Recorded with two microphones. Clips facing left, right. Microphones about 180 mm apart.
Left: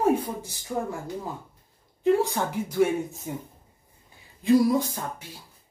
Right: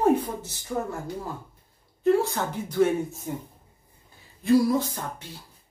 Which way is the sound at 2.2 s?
10° left (ahead or behind).